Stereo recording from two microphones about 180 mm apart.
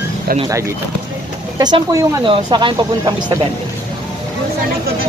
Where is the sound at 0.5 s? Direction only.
15° right (ahead or behind).